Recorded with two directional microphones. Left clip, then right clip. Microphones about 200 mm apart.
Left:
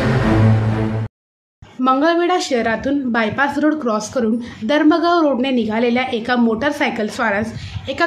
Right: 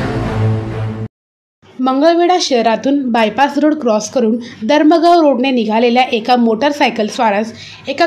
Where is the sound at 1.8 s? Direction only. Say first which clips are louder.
Right 4 dB; 15° right (ahead or behind).